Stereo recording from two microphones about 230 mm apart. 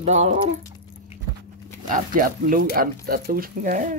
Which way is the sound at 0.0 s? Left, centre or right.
Right.